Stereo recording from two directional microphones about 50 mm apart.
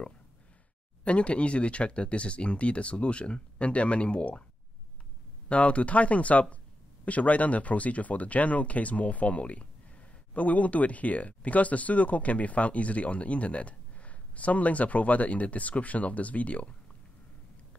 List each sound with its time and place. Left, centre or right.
1.0 s speech: left
5.5 s speech: left